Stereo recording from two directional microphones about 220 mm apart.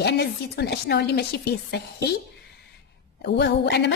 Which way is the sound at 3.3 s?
50° left (ahead or behind).